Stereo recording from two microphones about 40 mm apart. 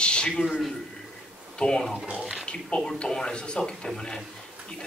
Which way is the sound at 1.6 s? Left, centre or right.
Centre.